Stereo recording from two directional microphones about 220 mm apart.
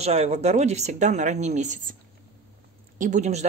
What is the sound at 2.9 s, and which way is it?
Speech, 35° right (ahead or behind).